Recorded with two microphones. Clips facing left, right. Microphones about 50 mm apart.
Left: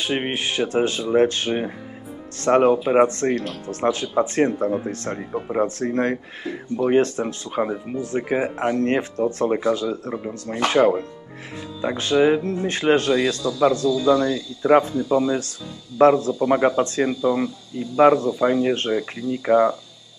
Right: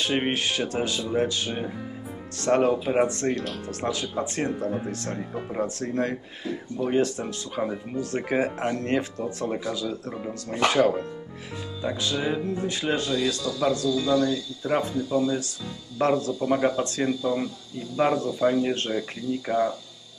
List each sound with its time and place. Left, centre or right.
0.0 s speech: centre; by 7.7 s left
7.9 s speech: centre
8.8 s speech: left
13.6 s speech: left